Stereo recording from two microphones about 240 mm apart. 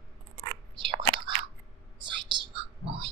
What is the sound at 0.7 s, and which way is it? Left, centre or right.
Biting, right.